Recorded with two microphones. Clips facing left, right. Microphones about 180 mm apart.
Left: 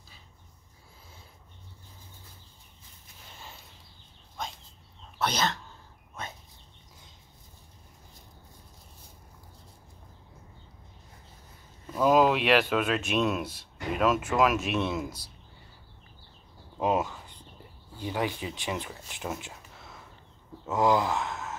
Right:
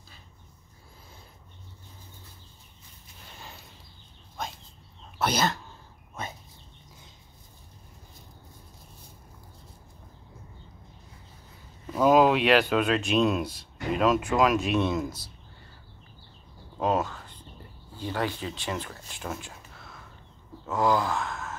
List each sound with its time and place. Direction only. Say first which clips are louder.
5.2 s speech: right 3 dB; 10° right (ahead or behind)
12.0 s speech: right 2 dB; centre (ahead or behind)
16.7 s speech: right 1 dB; 10° left (ahead or behind)